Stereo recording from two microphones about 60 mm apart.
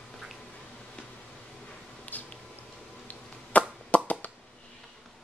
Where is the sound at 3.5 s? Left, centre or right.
Left.